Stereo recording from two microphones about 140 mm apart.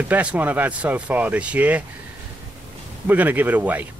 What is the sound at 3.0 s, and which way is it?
Speech, 15° right (ahead or behind).